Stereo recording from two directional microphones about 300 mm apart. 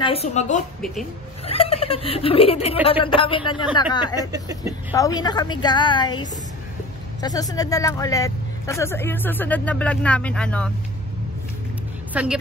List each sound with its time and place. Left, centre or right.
0.0 s speech: centre
4.2 s speech: centre
4.9 s speech: centre
7.2 s speech: centre
12.1 s a woman's voice: centre